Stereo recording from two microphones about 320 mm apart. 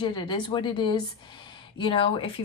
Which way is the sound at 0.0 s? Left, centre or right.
Centre.